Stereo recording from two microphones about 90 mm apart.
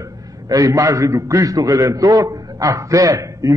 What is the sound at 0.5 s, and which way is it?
A man's voice, 40° right (ahead or behind).